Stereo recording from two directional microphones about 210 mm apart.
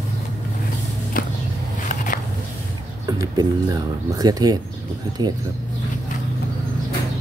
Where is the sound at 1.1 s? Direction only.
40° left (ahead or behind).